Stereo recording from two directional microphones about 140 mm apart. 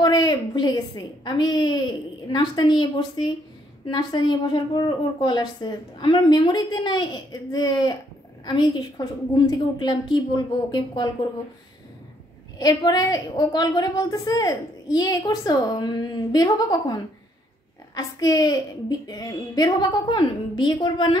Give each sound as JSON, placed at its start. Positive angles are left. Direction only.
{"t": 0.0, "sound": "a woman's voice", "side_deg": 30}
{"t": 12.5, "sound": "a woman's voice", "side_deg": 25}